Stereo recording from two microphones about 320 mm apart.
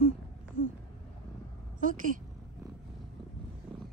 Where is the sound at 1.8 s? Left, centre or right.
Right.